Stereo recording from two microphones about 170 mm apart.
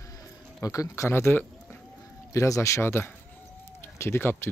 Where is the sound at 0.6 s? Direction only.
20° left (ahead or behind).